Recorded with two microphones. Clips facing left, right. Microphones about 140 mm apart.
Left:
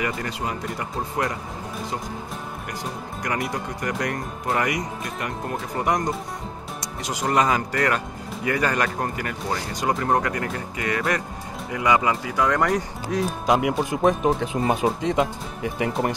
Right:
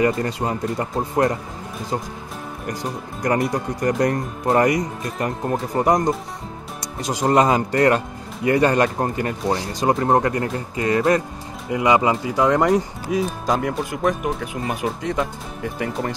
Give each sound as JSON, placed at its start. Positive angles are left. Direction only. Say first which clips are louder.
{"t": 0.0, "sound": "speech", "louder": "right 7 dB", "side_deg": -35}
{"t": 2.6, "sound": "speech", "louder": "right 4 dB", "side_deg": -35}
{"t": 13.1, "sound": "speech", "louder": "even", "side_deg": 0}
{"t": 13.7, "sound": "speech", "louder": "left 1 dB", "side_deg": 25}